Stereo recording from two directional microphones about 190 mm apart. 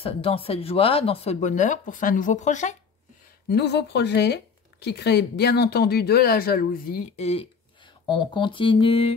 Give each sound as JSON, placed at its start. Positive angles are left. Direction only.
{"t": 0.0, "sound": "speech", "side_deg": 30}
{"t": 3.4, "sound": "speech", "side_deg": 60}
{"t": 7.2, "sound": "speech", "side_deg": 35}